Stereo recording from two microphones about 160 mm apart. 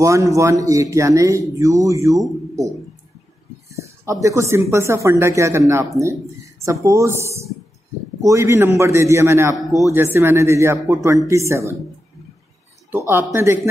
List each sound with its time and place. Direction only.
0.0 s speech: 20° right (ahead or behind)
4.0 s speech: 20° right (ahead or behind)
9.7 s speech: 20° left (ahead or behind)
9.9 s speech: 15° right (ahead or behind)
13.1 s speech: 15° right (ahead or behind)